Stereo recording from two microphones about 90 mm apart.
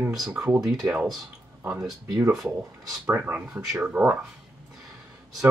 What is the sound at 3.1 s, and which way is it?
Speech, 20° right (ahead or behind).